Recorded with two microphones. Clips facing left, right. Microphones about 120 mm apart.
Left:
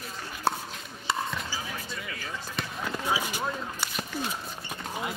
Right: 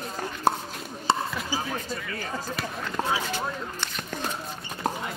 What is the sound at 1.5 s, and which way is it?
Basketball bounce, 45° right (ahead or behind).